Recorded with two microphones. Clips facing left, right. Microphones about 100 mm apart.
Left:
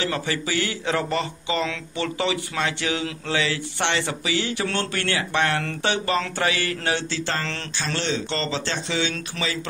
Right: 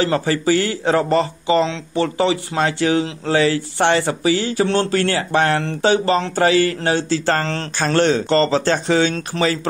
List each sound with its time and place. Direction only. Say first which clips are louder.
0.0 s speech: right 8 dB; 40° right (ahead or behind)